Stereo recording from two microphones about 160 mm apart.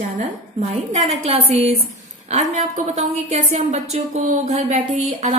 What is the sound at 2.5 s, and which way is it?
A woman's voice, 45° right (ahead or behind).